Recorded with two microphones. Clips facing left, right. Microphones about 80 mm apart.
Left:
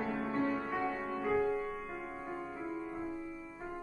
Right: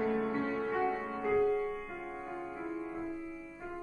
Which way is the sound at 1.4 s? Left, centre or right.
Left.